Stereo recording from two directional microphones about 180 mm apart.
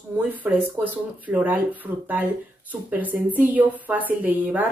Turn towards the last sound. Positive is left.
turn(degrees=-10)  # may be behind; listen again after turning